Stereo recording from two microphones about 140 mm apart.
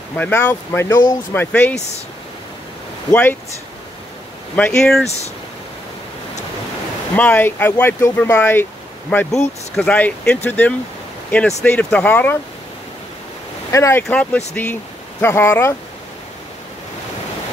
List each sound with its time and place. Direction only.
0.1 s speech: 15° left (ahead or behind)
3.1 s speech: 15° left (ahead or behind)
4.6 s speech: 5° left (ahead or behind)
7.2 s speech: 10° left (ahead or behind)
13.7 s speech: 20° left (ahead or behind)
14.0 s speech: 10° left (ahead or behind)